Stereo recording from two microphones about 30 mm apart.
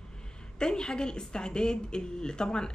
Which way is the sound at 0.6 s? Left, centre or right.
Left.